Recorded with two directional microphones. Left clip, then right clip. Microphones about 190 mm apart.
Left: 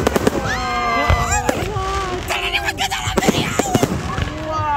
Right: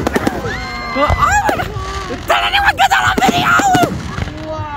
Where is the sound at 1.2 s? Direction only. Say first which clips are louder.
Right 7 dB; 10° right (ahead or behind).